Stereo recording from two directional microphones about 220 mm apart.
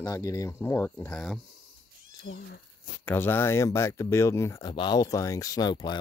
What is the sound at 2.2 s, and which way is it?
Speech, 45° left (ahead or behind).